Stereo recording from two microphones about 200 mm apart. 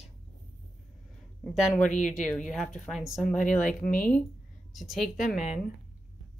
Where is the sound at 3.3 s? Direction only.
40° left (ahead or behind).